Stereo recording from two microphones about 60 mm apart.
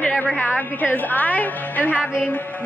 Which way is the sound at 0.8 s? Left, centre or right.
Left.